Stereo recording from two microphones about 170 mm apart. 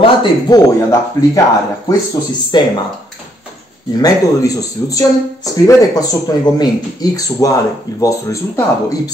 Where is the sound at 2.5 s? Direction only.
25° left (ahead or behind).